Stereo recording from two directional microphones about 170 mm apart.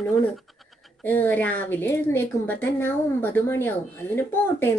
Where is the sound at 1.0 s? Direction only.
10° left (ahead or behind).